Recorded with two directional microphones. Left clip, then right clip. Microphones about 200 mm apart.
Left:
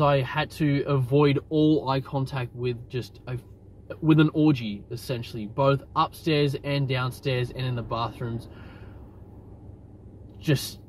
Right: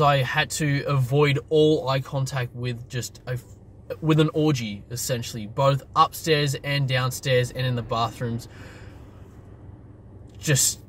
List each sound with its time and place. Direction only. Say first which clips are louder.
0.0 s speech: right 3 dB; 20° right (ahead or behind)